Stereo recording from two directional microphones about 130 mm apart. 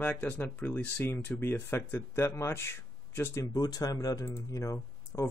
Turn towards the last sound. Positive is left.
turn(degrees=25)  # may be behind; listen again after turning